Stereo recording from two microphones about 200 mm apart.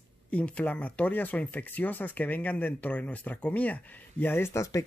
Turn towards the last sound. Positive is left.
turn(degrees=15)  # may be behind; listen again after turning